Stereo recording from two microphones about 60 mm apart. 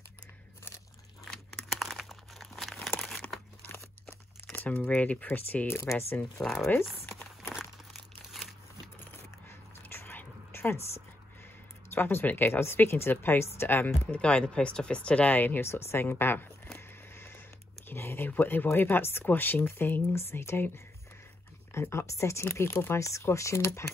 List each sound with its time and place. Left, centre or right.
1.3 s crumpling: centre
4.5 s speech: left
6.4 s speech: centre
7.9 s crumpling: centre
9.0 s a sound: left
11.9 s speech: left
14.1 s speech: centre; by 16.4 s left
16.7 s a sound: left
17.8 s speech: left
21.7 s speech: left
22.5 s speech: left
22.9 s speech: left